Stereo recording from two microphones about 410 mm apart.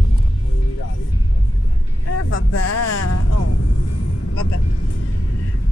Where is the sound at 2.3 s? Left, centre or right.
Left.